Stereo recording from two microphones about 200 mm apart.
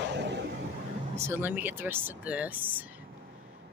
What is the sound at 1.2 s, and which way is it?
Speech, 10° right (ahead or behind).